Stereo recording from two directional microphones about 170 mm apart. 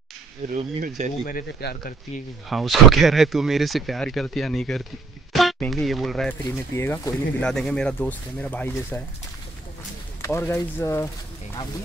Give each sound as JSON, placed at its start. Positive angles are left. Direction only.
{"t": 0.6, "sound": "speech", "side_deg": -45}
{"t": 1.2, "sound": "speech", "side_deg": 60}
{"t": 2.5, "sound": "speech", "side_deg": 0}
{"t": 6.7, "sound": "speech", "side_deg": 15}
{"t": 10.2, "sound": "speech", "side_deg": 15}